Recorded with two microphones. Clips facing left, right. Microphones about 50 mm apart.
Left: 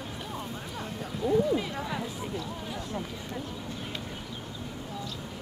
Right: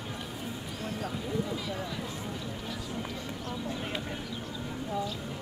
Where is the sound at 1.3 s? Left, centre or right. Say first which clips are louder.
Left 10 dB; left.